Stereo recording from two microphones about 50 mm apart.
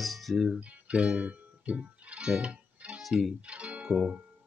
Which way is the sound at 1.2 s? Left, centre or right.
Right.